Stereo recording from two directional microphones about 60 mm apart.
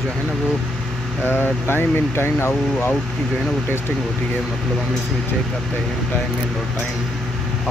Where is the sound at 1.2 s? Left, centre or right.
Left.